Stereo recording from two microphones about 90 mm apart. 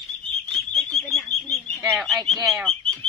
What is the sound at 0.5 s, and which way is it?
Frog, 10° left (ahead or behind).